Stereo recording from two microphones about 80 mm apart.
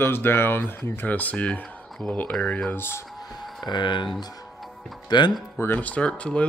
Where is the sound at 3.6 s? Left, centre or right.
Left.